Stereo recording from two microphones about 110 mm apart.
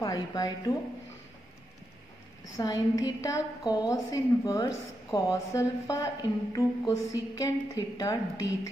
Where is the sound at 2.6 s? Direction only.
35° left (ahead or behind).